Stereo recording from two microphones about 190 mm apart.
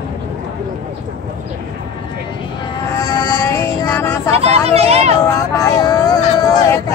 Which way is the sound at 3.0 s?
15° left (ahead or behind).